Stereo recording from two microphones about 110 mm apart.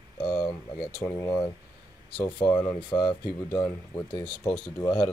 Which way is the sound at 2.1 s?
45° left (ahead or behind).